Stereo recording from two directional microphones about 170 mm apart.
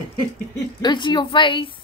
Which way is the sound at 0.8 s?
25° left (ahead or behind).